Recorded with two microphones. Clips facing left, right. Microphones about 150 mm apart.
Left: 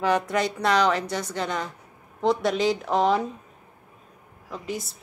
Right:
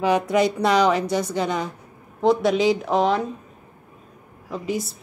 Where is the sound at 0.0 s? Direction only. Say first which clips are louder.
Right 4 dB; 10° right (ahead or behind).